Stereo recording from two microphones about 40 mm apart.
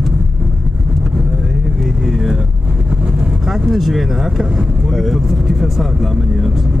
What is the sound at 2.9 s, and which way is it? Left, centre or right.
Vehicle, right.